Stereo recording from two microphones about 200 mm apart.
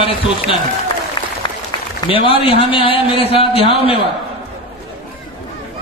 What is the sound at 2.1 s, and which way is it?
A man's voice, 25° left (ahead or behind).